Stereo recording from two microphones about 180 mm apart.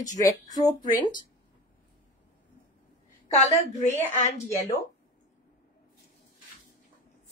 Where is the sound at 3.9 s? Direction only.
40° left (ahead or behind).